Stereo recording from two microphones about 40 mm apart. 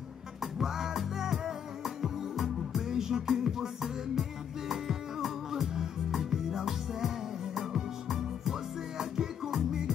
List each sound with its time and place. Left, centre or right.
0.4 s music: centre